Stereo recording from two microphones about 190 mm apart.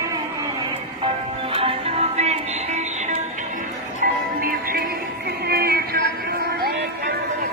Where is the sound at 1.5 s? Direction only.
30° right (ahead or behind).